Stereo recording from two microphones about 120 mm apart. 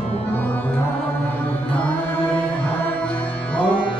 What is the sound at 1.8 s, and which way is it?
Music, 10° left (ahead or behind).